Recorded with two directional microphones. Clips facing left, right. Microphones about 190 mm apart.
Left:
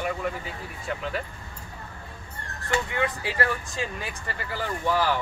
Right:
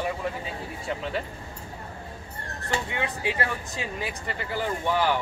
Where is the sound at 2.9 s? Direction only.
20° right (ahead or behind).